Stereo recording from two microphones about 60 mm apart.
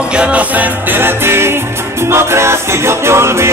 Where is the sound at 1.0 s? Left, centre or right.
Right.